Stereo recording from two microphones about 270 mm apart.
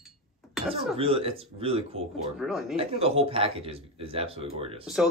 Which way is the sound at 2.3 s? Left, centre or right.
Centre.